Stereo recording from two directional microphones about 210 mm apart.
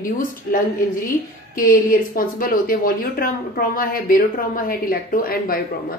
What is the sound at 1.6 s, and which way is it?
A woman's voice, 45° left (ahead or behind).